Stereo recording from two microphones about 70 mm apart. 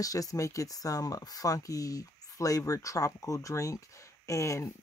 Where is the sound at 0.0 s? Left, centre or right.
Left.